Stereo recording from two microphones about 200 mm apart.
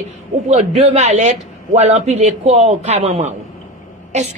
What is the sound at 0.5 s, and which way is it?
A woman's voice, 35° right (ahead or behind).